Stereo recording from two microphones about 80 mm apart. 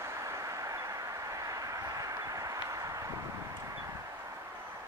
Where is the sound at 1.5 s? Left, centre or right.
Right.